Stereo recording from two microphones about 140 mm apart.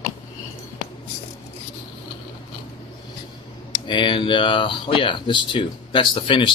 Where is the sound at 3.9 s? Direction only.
35° left (ahead or behind).